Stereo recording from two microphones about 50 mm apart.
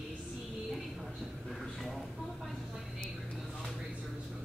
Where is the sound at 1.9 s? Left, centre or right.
Centre.